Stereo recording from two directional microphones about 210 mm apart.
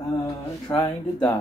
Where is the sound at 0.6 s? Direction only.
20° left (ahead or behind).